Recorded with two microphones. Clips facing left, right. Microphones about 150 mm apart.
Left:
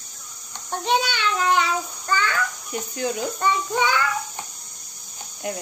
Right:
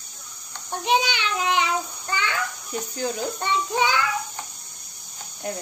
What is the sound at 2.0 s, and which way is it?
Speech, 20° right (ahead or behind).